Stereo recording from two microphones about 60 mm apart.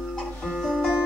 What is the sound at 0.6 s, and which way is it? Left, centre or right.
Music, centre.